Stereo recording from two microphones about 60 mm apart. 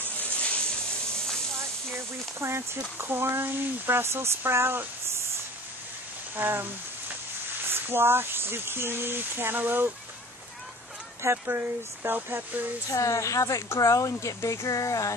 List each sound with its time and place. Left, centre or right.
0.2 s a sound: left
2.0 s speech: right
6.3 s speech: right
7.7 s speech: right
11.2 s speech: right
12.9 s a woman's voice: left